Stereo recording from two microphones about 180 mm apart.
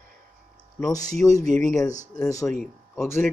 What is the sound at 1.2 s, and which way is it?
Speech, 15° left (ahead or behind).